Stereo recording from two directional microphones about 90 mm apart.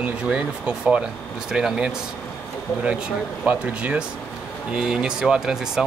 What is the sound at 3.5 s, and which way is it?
Speech, 15° right (ahead or behind).